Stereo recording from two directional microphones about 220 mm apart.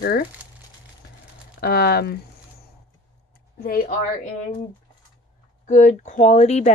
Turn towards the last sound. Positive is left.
turn(degrees=30)  # may be behind; listen again after turning